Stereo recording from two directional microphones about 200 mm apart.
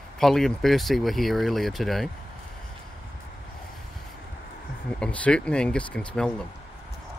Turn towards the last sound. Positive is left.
turn(degrees=5)  # may be behind; listen again after turning